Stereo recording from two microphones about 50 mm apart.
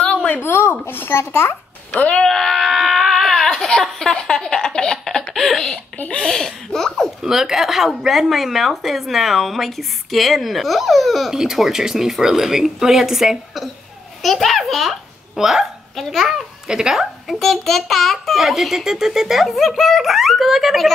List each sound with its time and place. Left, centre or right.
0.0 s a sound: left
0.4 s a child's voice: left
1.9 s speech: left
2.1 s baby cry: centre
4.1 s speech: centre
5.9 s speech: left
6.2 s speech: centre
7.2 s a child's voice: centre
16.0 s a child's voice: centre
16.3 s a child's voice: centre
17.4 s a child's voice: centre